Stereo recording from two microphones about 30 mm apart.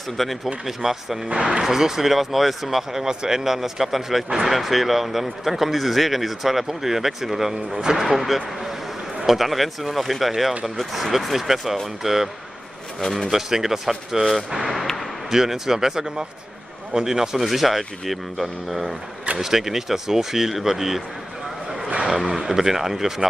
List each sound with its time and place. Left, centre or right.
0.2 s speech: centre
0.7 s speech: centre
13.0 s speech: centre
13.3 s speech: centre
15.2 s a man's voice: centre
17.5 s speech: centre
22.0 s speech: centre